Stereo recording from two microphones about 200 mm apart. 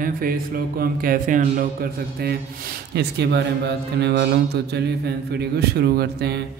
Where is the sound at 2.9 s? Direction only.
55° right (ahead or behind).